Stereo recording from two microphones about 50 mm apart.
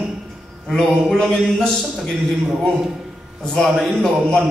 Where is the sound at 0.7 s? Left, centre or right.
Centre.